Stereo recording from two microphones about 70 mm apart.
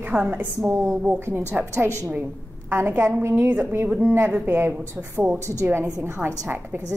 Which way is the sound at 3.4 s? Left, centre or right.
Right.